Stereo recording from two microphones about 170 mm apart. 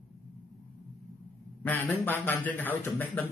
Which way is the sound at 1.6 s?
10° left (ahead or behind).